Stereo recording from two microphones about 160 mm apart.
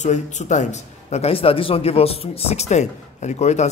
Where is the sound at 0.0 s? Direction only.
50° left (ahead or behind).